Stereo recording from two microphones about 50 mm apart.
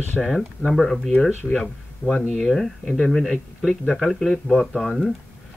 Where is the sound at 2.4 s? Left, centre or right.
Centre.